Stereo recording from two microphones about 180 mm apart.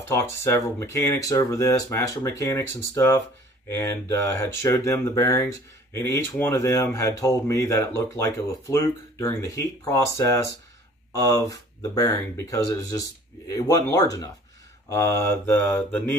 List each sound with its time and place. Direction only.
0.1 s speech: 15° left (ahead or behind)